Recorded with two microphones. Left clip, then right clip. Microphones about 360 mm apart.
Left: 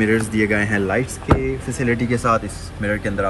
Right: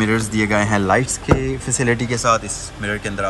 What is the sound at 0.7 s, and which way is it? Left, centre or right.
Speech, right.